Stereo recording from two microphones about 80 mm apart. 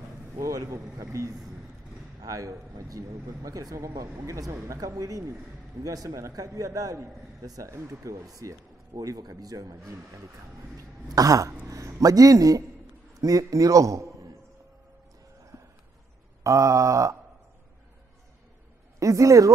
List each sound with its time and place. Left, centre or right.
0.4 s a sound: right
2.2 s speech: right
10.8 s throat clearing: right
11.6 s a man's voice: right
15.5 s a sound: right
18.9 s speech: right